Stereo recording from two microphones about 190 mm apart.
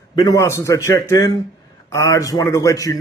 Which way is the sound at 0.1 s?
20° left (ahead or behind).